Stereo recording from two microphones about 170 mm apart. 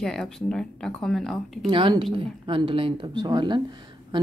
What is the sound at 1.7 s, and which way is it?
Speech, 30° right (ahead or behind).